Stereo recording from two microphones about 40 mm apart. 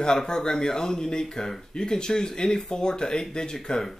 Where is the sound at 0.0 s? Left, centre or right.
Centre.